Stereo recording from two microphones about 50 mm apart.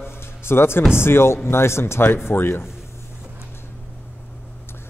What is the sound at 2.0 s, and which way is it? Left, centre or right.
Speech, left.